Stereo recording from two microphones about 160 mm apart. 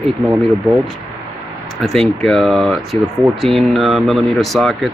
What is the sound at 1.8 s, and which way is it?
Speech, centre (ahead or behind).